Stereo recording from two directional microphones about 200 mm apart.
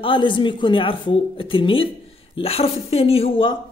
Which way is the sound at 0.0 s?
25° left (ahead or behind).